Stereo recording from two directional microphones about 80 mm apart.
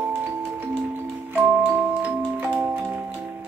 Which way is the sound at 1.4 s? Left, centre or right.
Right.